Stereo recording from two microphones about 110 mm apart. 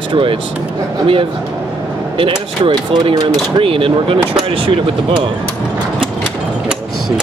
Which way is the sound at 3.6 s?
55° right (ahead or behind).